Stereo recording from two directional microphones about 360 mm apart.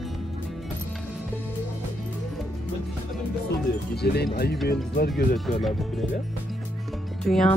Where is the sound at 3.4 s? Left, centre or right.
Left.